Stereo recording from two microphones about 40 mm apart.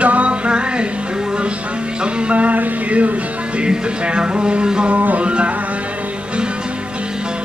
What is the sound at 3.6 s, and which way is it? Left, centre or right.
Music, right.